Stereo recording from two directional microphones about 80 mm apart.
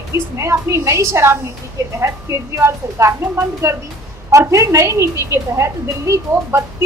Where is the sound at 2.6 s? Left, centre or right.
Right.